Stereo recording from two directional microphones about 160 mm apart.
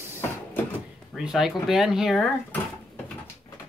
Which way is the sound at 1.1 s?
Centre (ahead or behind).